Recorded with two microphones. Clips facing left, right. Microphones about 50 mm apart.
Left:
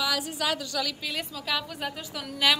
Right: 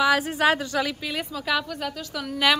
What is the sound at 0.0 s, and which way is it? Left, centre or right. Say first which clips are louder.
Speech: right 9 dB; right.